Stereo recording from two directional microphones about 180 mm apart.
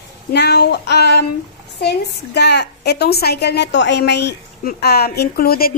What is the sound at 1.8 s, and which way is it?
A woman's voice, 70° left (ahead or behind).